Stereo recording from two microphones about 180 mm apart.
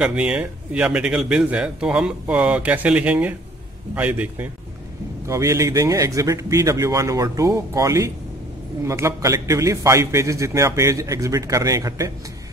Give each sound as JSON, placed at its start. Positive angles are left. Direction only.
{"t": 0.0, "sound": "a man's voice", "side_deg": -5}